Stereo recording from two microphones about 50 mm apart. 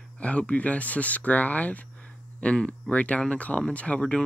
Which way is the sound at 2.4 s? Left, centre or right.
Centre.